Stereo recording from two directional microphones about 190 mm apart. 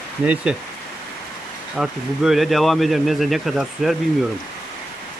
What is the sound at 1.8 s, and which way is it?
Speech, centre (ahead or behind).